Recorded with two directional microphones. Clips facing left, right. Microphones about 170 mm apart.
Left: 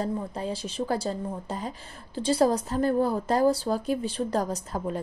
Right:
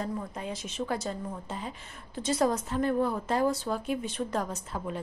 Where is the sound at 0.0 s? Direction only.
30° left (ahead or behind).